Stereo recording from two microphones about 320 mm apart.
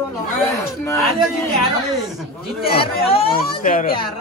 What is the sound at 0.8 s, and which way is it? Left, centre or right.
Speech, centre.